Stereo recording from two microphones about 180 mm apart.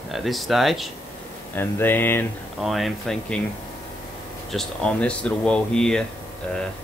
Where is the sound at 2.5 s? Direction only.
Centre (ahead or behind).